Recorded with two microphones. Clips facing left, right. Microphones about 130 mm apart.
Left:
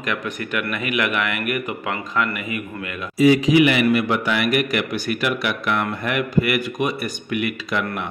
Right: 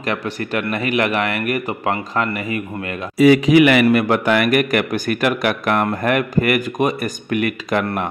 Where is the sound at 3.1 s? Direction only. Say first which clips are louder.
Right 3 dB; 65° right (ahead or behind).